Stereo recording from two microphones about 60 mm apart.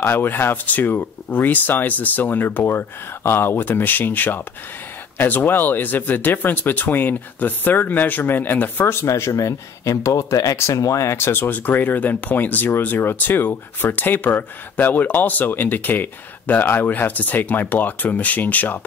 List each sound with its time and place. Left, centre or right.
0.0 s speech: left
9.0 s speech: left